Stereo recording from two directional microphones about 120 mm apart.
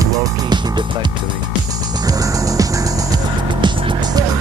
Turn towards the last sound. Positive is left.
turn(degrees=-40)  # may be behind; listen again after turning